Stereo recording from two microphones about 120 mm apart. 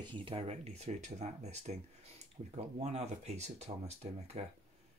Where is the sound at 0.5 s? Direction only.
65° right (ahead or behind).